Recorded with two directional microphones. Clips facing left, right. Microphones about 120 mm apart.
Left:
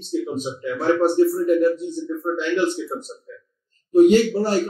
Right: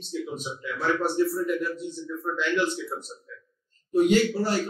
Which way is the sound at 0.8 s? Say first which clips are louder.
Left 7 dB; 45° left (ahead or behind).